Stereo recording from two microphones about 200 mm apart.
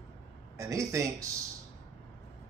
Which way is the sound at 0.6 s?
15° right (ahead or behind).